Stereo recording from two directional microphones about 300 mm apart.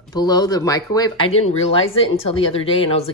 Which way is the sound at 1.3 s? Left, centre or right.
Left.